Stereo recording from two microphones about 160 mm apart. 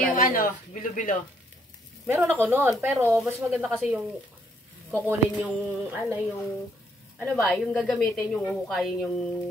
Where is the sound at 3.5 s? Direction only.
Centre (ahead or behind).